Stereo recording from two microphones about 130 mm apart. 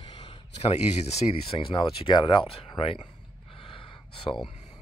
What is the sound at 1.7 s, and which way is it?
Speech, 40° left (ahead or behind).